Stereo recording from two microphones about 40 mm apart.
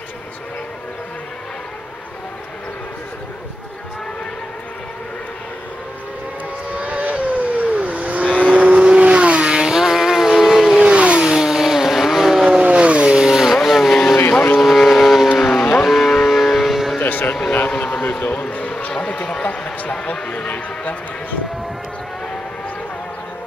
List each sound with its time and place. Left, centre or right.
6.8 s vehicle: right; by 10.8 s centre
10.8 s vehicle: right
11.2 s vehicle: centre
12.6 s vehicle: right
13.2 s vehicle: centre
14.3 s boat: left
14.6 s boat: centre
15.3 s vehicle: centre
15.8 s moo: centre
16.3 s civil defense siren: centre
17.0 s a sound: left
18.3 s a sound: left